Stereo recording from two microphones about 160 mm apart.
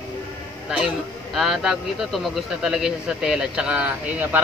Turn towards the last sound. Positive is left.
turn(degrees=-10)  # may be behind; listen again after turning